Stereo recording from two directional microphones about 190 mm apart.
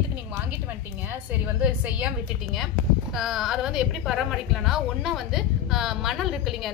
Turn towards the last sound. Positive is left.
turn(degrees=0)  # may be behind; listen again after turning